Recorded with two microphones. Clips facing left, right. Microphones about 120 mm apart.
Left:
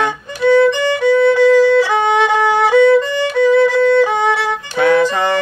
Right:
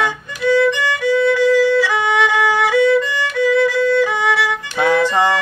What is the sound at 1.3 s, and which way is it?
Music, 25° left (ahead or behind).